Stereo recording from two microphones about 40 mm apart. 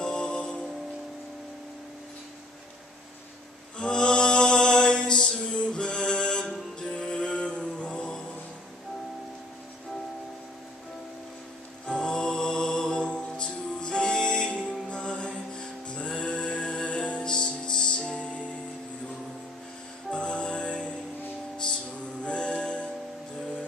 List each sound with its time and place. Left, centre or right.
0.0 s music: centre
3.7 s music: left
11.9 s music: centre
20.1 s music: left
22.2 s music: left